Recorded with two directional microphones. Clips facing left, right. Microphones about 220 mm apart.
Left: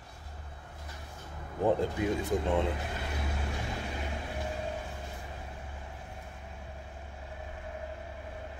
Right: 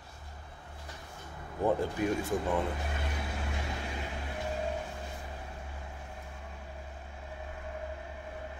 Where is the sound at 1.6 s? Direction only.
20° left (ahead or behind).